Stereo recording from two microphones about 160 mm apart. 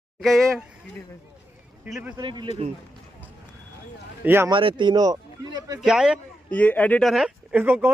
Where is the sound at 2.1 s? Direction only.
30° right (ahead or behind).